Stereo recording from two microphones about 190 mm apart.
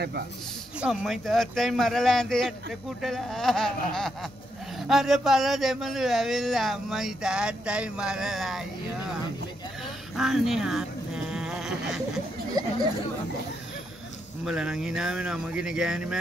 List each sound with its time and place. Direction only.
0.7 s speech: centre (ahead or behind)
10.1 s a sound: centre (ahead or behind)
12.6 s speech: 20° right (ahead or behind)
14.4 s speech: 5° right (ahead or behind)